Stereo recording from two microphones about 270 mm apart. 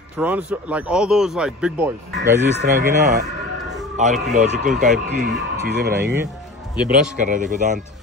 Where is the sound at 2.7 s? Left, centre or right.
Right.